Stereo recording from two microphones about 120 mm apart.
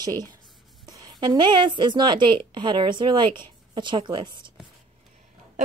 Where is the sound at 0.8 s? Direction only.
35° right (ahead or behind).